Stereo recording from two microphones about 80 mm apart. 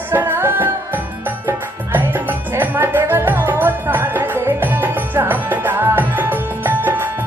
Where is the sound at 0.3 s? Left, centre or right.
Right.